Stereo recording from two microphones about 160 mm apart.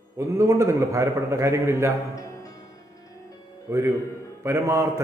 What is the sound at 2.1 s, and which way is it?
Music, 20° left (ahead or behind).